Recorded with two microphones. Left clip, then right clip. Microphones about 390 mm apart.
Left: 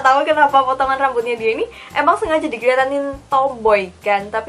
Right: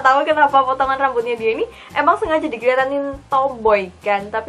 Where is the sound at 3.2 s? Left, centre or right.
Centre.